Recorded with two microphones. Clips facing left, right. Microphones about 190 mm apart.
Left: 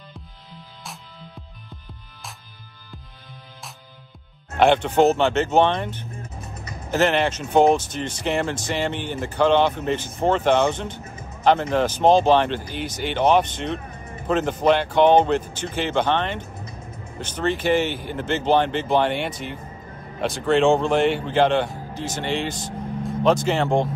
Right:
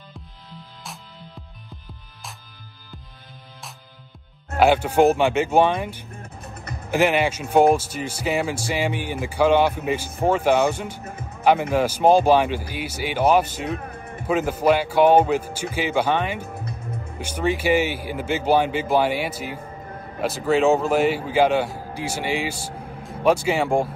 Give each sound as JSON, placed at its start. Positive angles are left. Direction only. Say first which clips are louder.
{"t": 4.6, "sound": "speech", "louder": "even", "side_deg": -5}
{"t": 6.2, "sound": "music", "louder": "left 1 dB", "side_deg": -60}
{"t": 6.9, "sound": "speech", "louder": "even", "side_deg": -10}